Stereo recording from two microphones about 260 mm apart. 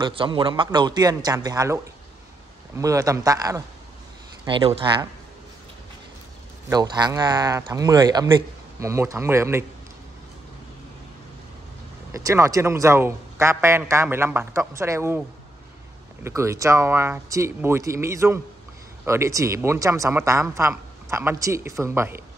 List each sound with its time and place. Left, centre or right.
0.0 s speech: centre
6.7 s speech: centre
12.1 s speech: centre
16.3 s speech: centre